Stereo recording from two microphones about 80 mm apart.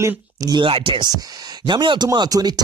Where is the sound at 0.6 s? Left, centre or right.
Right.